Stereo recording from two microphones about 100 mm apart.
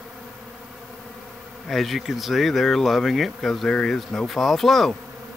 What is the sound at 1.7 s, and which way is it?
Speech, centre (ahead or behind).